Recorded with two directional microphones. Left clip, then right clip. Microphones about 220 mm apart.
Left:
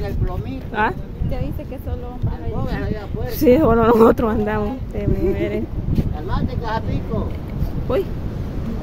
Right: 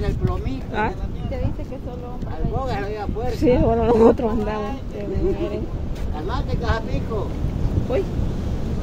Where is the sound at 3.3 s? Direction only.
25° left (ahead or behind).